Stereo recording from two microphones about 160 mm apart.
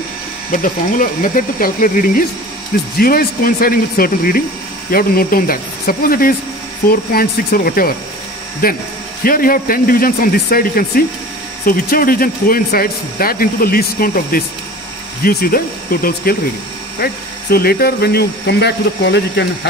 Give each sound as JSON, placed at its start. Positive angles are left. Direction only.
{"t": 0.5, "sound": "speech", "side_deg": 60}